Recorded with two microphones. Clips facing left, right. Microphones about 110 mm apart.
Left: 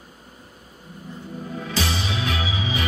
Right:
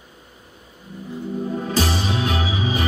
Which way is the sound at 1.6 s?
40° right (ahead or behind).